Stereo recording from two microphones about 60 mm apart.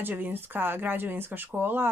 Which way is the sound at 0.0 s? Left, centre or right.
Right.